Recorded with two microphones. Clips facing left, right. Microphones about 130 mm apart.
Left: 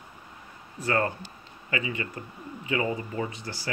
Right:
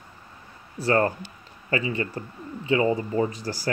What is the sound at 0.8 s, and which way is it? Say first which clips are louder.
Speech: right 5 dB; 35° right (ahead or behind).